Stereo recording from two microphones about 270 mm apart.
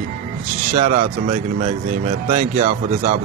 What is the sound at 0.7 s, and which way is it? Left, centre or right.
Speech, right.